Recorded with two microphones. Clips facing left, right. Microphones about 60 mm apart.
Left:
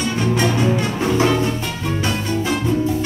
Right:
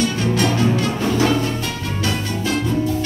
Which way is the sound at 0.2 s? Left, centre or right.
Centre.